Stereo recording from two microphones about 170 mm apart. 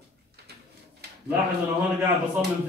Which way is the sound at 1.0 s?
75° right (ahead or behind).